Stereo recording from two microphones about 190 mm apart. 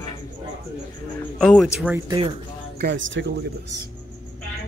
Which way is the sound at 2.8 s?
70° right (ahead or behind).